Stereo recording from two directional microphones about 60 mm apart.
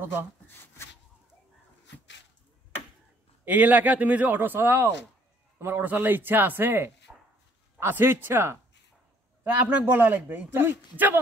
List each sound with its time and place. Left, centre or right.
0.0 s speech: right
3.4 s speech: right
7.1 s a sound: centre
7.8 s speech: right
9.5 s speech: right